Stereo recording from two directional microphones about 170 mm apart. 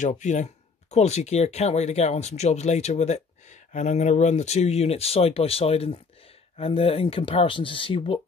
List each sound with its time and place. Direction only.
0.0 s speech: 45° left (ahead or behind)